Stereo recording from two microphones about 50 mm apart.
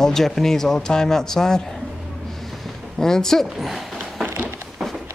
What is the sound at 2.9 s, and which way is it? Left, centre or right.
Speech, centre.